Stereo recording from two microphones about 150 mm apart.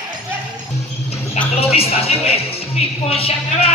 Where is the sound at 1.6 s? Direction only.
40° left (ahead or behind).